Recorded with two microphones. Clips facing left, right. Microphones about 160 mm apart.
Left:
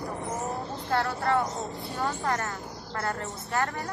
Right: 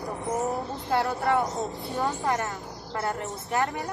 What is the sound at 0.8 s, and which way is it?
Speech, 20° right (ahead or behind).